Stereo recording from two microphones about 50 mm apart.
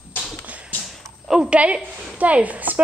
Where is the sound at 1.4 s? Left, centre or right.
Right.